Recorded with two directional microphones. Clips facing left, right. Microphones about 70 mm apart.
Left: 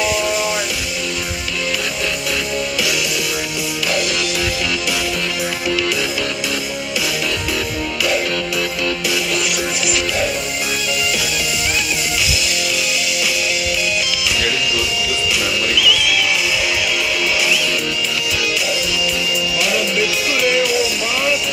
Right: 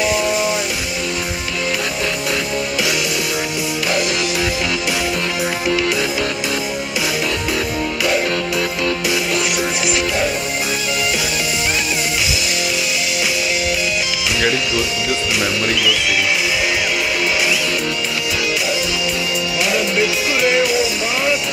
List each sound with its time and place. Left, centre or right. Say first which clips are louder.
15.3 s music: right 1 dB; right
19.6 s music: right 2 dB; right